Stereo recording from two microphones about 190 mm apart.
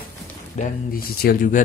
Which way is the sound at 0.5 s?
45° left (ahead or behind).